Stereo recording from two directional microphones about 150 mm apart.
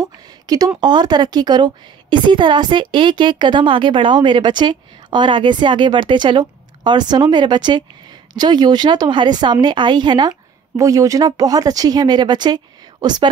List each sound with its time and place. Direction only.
0.7 s a woman's voice: 30° right (ahead or behind)